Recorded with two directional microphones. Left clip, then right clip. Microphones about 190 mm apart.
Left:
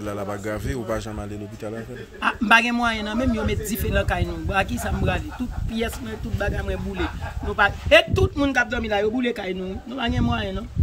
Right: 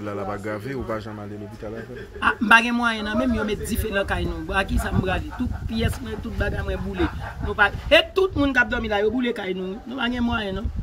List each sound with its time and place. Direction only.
0.0 s speech: 15° left (ahead or behind)
2.2 s speech: centre (ahead or behind)